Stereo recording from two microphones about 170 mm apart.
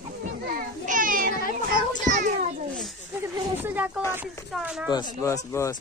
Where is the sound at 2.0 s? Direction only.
45° right (ahead or behind).